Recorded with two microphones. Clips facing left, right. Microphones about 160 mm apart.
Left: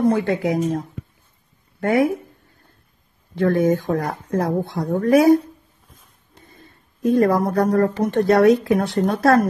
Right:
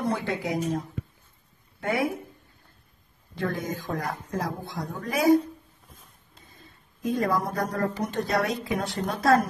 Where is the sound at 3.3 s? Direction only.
60° left (ahead or behind).